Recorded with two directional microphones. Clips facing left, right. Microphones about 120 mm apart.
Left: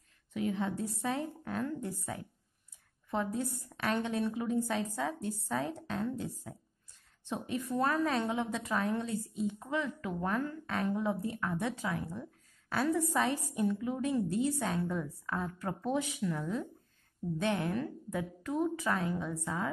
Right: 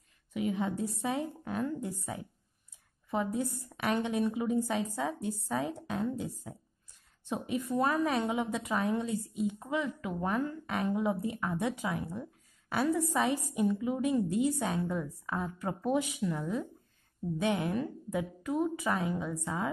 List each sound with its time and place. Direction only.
0.3 s a woman's voice: 10° right (ahead or behind)